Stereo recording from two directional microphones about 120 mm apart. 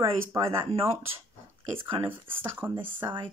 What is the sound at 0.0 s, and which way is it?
Speech, 25° right (ahead or behind).